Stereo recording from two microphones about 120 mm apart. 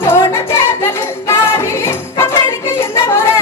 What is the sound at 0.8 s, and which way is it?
Music, 25° left (ahead or behind).